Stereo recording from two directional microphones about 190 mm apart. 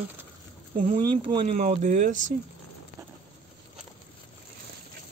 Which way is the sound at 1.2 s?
30° right (ahead or behind).